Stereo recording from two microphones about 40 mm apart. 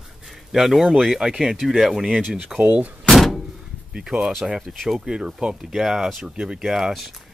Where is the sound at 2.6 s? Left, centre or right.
Right.